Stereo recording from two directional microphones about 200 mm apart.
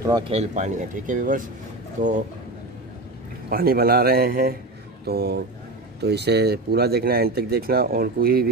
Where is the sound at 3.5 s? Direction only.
50° right (ahead or behind).